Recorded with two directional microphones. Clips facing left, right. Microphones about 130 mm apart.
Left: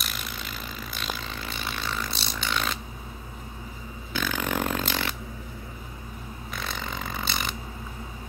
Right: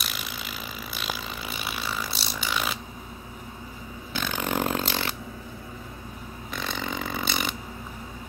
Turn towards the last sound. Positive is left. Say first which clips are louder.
# right 2 dB
turn(degrees=0)  # may be behind; listen again after turning